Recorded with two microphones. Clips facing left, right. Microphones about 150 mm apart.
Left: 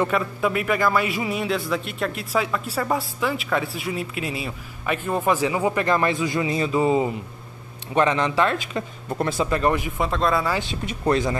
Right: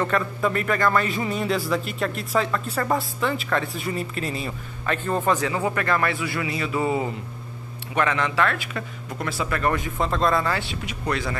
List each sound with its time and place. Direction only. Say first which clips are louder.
0.0 s a man's voice: left 1 dB; 10° left (ahead or behind)
9.9 s a man's voice: even; centre (ahead or behind)
10.5 s speech: left 2 dB; 20° left (ahead or behind)